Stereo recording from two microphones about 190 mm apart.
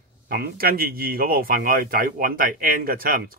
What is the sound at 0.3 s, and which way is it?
A man's voice, 50° right (ahead or behind).